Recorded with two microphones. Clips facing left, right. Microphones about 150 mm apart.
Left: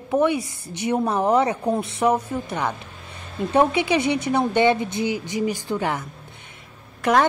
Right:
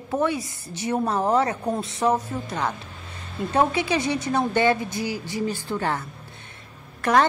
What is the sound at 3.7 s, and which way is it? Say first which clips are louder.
A woman's voice: left 3 dB; 15° left (ahead or behind).